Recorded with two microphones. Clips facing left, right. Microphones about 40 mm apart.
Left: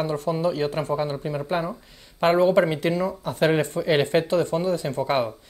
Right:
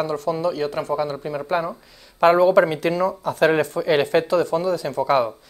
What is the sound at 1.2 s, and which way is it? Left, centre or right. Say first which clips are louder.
Speech: right 2 dB; centre.